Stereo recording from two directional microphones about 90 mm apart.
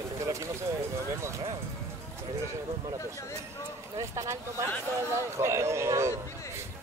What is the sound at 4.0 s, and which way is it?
Speech, 35° right (ahead or behind).